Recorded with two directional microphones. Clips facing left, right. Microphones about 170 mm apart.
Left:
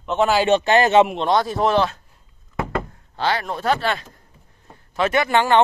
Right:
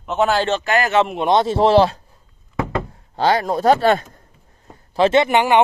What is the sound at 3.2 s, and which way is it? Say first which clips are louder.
Speech: right 6 dB; 40° right (ahead or behind).